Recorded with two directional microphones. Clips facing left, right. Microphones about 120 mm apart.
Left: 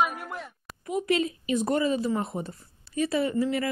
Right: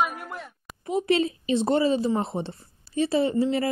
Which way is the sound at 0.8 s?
30° right (ahead or behind).